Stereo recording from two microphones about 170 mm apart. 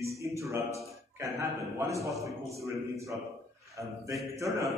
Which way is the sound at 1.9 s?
20° right (ahead or behind).